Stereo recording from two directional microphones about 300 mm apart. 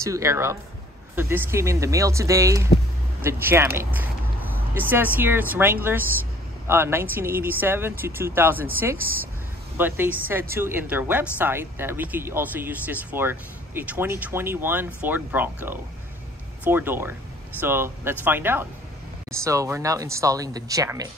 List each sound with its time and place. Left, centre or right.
0.0 s speech: centre
8.9 s speech: right
9.8 s speech: centre